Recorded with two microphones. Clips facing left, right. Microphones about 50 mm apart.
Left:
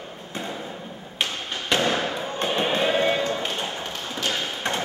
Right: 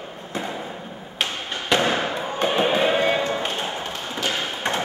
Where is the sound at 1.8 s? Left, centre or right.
Centre.